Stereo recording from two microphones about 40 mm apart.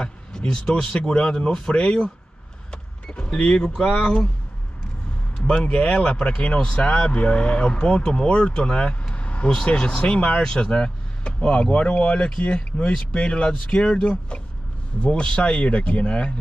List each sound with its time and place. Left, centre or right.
0.0 s a sound: left
0.9 s speech: left
2.7 s power windows: left
3.3 s speech: left
5.4 s speech: left
9.1 s vehicle: left
9.7 s speech: left